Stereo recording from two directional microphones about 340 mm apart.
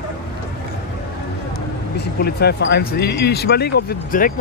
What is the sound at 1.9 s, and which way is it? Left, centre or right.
Speech, left.